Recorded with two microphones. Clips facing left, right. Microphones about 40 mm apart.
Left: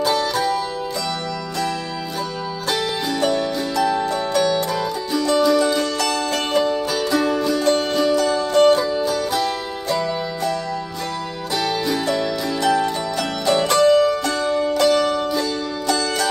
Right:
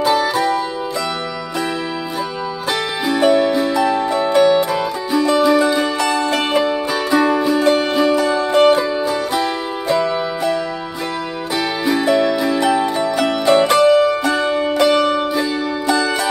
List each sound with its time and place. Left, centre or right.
0.0 s music: centre
2.7 s music: centre
11.8 s music: centre